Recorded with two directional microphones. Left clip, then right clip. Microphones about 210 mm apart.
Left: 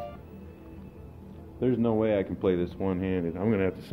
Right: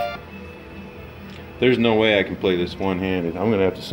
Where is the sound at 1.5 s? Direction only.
10° right (ahead or behind).